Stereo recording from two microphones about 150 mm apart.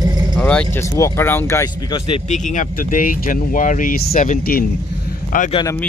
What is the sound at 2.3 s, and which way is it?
Speech, 60° left (ahead or behind).